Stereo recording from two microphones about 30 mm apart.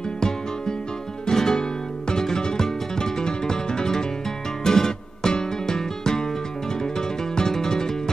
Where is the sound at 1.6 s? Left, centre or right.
Left.